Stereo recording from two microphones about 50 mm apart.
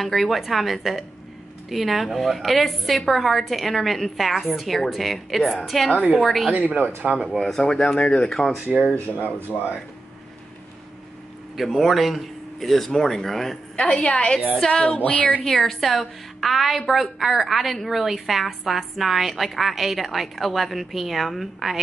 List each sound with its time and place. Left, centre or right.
0.0 s a woman's voice: centre
6.5 s speech: right
7.0 s speech: centre
7.2 s a woman's voice: centre
7.6 s speech: centre
8.3 s a woman's voice: centre
8.6 s speech: right
11.5 s speech: centre
13.8 s a woman's voice: left
15.4 s a woman's voice: centre